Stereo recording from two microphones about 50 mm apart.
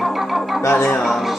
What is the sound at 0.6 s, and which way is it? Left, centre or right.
Speech, left.